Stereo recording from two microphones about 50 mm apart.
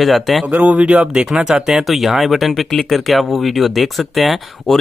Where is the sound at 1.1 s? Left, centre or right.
Centre.